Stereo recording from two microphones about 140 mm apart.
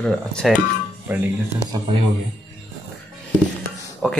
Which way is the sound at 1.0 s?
15° right (ahead or behind).